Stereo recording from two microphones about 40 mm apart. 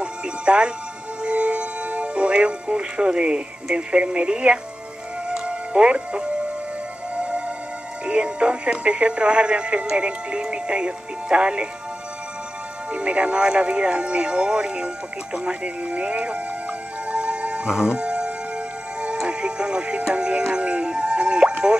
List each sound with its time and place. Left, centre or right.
0.0 s music: right
3.7 s speech: right
5.3 s music: centre
5.7 s speech: right
7.2 s music: right
8.0 s speech: right
12.9 s speech: right
17.1 s music: right